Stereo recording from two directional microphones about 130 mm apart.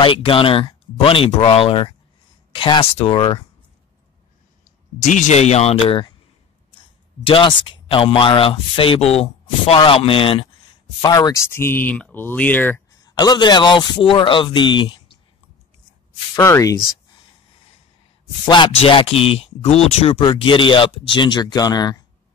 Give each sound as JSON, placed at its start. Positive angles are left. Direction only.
{"t": 0.0, "sound": "speech", "side_deg": 45}
{"t": 5.0, "sound": "speech", "side_deg": 65}
{"t": 7.2, "sound": "speech", "side_deg": 40}
{"t": 11.0, "sound": "speech", "side_deg": 30}
{"t": 13.0, "sound": "speech", "side_deg": 30}
{"t": 16.3, "sound": "speech", "side_deg": 25}
{"t": 18.4, "sound": "speech", "side_deg": 35}